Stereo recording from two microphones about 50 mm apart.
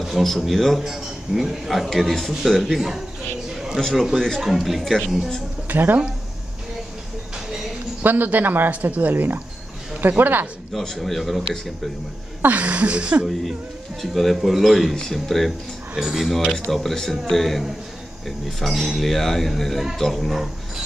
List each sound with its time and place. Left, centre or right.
0.0 s speech: centre
5.7 s speech: right
8.0 s speech: right
10.8 s speech: centre
12.4 s speech: right
14.0 s speech: centre